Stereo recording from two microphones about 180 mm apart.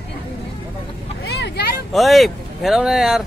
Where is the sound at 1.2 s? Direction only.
65° left (ahead or behind).